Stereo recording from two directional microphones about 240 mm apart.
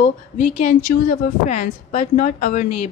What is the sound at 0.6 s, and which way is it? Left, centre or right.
A woman's voice, left.